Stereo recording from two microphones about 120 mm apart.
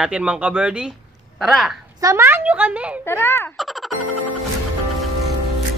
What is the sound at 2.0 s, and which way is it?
Speech, 25° right (ahead or behind).